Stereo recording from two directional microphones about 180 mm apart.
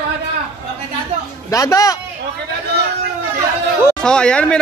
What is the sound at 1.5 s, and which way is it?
Speech, 20° left (ahead or behind).